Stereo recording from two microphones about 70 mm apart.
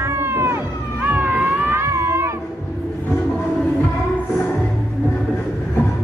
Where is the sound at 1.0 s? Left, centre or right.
Right.